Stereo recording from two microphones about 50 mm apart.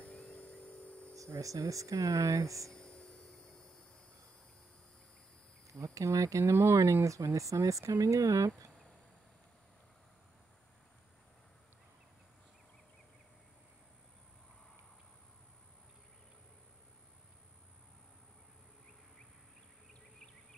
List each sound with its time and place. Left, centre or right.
0.0 s a sound: left
1.1 s speech: right
2.7 s hum: centre
6.0 s speech: right